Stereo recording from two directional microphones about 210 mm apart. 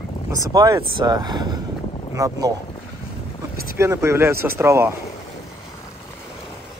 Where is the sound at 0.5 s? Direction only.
15° right (ahead or behind).